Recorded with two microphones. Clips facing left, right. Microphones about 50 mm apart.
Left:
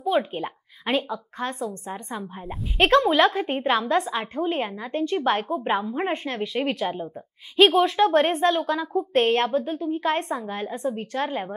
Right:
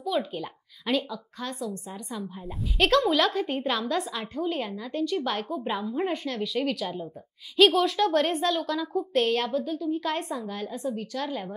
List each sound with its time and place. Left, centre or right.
0.0 s a woman's voice: left